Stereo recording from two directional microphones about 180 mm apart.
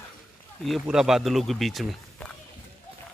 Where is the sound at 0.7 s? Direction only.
Centre (ahead or behind).